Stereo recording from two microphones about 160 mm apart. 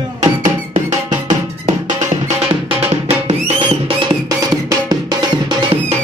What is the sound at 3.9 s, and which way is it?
Music, 30° right (ahead or behind).